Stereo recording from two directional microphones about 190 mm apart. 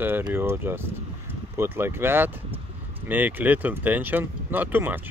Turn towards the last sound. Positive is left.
turn(degrees=-10)  # may be behind; listen again after turning